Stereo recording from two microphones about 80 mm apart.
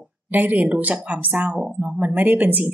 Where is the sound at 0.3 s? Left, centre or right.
Right.